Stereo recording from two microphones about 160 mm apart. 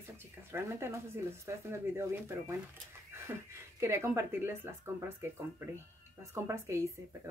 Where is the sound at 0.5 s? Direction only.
15° right (ahead or behind).